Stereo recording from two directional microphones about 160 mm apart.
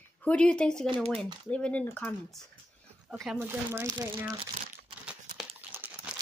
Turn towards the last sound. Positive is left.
turn(degrees=-10)  # may be behind; listen again after turning